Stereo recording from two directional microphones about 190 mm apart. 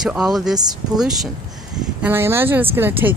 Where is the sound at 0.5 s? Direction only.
20° right (ahead or behind).